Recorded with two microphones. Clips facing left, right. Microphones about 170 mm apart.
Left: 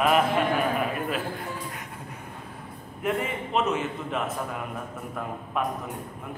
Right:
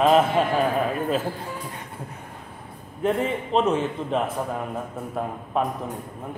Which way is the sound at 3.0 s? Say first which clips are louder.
Right 5 dB; 30° right (ahead or behind).